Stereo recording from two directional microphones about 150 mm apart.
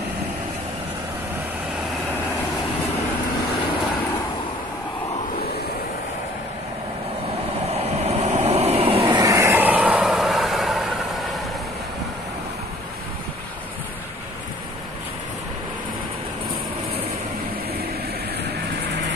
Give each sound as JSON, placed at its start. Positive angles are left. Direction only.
{"t": 7.7, "sound": "vehicle", "side_deg": -45}
{"t": 9.2, "sound": "vehicle", "side_deg": -20}